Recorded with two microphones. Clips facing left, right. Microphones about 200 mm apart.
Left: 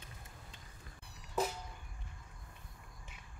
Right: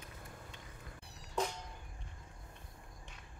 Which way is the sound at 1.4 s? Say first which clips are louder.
Left 1 dB; 5° left (ahead or behind).